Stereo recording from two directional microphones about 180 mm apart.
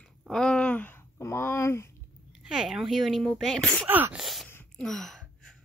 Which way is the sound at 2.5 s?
Centre (ahead or behind).